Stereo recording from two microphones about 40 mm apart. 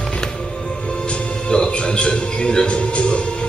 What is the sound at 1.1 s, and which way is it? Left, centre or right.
A man's voice, left.